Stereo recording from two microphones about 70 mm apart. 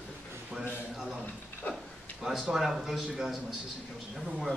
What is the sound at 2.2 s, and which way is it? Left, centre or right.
A man's voice, centre.